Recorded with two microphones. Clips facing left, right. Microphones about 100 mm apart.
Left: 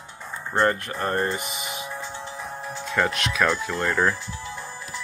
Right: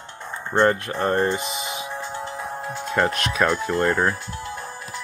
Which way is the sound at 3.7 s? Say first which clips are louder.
Right 3 dB; 10° right (ahead or behind).